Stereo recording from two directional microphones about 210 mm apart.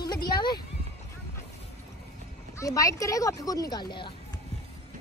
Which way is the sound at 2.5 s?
15° left (ahead or behind).